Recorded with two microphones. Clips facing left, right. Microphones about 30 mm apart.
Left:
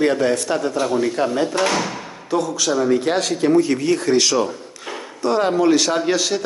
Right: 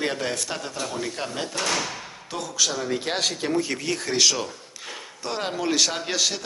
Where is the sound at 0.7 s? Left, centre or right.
Centre.